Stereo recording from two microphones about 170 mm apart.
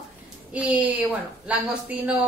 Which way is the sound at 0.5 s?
10° right (ahead or behind).